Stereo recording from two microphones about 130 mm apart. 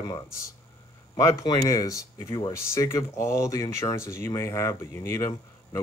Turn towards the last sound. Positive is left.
turn(degrees=20)  # may be behind; listen again after turning